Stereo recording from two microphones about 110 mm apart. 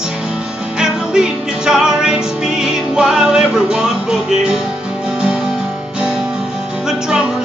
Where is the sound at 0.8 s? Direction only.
5° right (ahead or behind).